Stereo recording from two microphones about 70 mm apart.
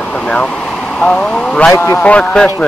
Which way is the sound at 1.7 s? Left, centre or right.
Left.